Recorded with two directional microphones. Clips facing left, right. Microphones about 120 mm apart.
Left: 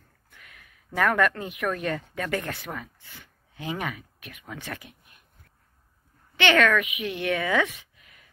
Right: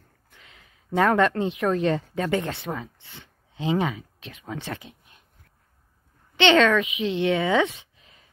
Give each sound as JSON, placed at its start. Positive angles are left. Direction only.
{"t": 0.3, "sound": "speech", "side_deg": -25}
{"t": 6.3, "sound": "speech", "side_deg": -20}